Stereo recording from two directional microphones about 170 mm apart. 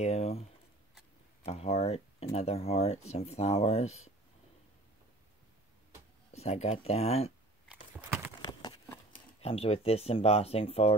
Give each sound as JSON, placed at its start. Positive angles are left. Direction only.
{"t": 0.0, "sound": "speech", "side_deg": 40}
{"t": 6.3, "sound": "speech", "side_deg": 40}
{"t": 8.4, "sound": "a sound", "side_deg": 25}
{"t": 9.4, "sound": "speech", "side_deg": 35}